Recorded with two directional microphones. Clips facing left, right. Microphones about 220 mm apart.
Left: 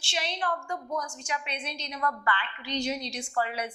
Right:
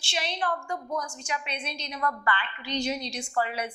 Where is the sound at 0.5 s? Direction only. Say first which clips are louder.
Right 1 dB; 25° right (ahead or behind).